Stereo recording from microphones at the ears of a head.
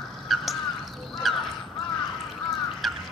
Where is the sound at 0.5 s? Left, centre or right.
Left.